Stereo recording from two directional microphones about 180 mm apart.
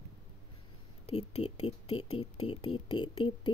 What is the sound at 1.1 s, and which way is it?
Speech, 35° left (ahead or behind).